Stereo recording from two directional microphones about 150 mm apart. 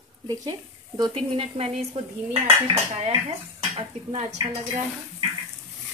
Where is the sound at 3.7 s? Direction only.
50° right (ahead or behind).